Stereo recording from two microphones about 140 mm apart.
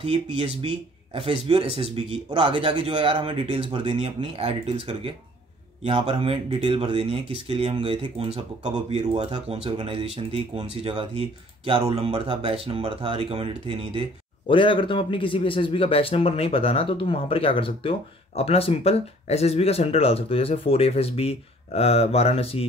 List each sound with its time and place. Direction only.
0.0 s speech: 40° right (ahead or behind)
14.5 s a man's voice: 35° left (ahead or behind)